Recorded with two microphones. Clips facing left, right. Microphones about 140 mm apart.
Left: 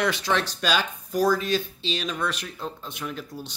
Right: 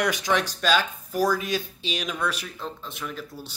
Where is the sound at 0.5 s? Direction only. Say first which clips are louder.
Right 2 dB; centre (ahead or behind).